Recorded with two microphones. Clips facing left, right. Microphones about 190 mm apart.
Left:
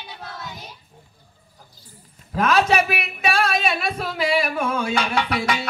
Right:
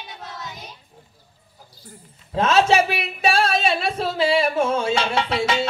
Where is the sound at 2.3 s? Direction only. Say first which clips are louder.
Right 2 dB; 25° right (ahead or behind).